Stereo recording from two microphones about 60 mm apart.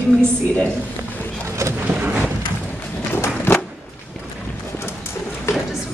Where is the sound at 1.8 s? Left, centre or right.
Right.